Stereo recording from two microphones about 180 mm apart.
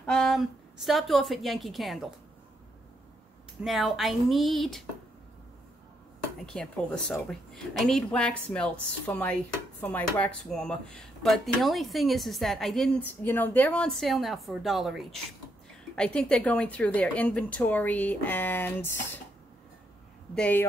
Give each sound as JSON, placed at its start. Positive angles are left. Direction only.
{"t": 0.0, "sound": "a woman's voice", "side_deg": 5}
{"t": 3.6, "sound": "speech", "side_deg": 0}
{"t": 6.4, "sound": "a woman's voice", "side_deg": 5}
{"t": 20.3, "sound": "a woman's voice", "side_deg": 5}